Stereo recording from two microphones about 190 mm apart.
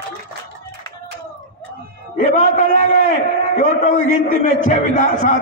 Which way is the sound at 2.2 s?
40° left (ahead or behind).